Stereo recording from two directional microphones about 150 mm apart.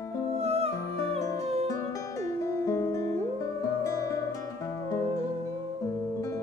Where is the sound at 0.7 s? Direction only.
20° left (ahead or behind).